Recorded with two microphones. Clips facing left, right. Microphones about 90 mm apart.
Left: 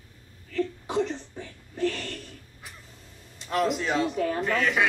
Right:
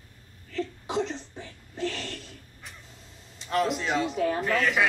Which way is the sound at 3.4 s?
Centre (ahead or behind).